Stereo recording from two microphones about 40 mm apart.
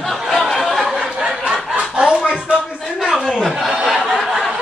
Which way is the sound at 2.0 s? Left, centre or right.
Centre.